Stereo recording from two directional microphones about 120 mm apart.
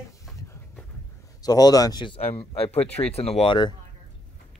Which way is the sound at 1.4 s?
30° left (ahead or behind).